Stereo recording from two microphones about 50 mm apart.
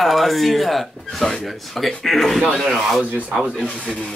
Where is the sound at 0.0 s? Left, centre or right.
Centre.